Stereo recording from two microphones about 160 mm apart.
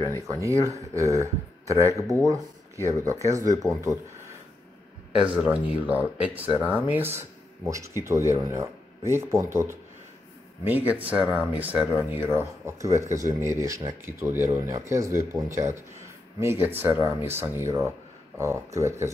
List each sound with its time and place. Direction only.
0.3 s speech: 20° right (ahead or behind)
5.2 s speech: 10° right (ahead or behind)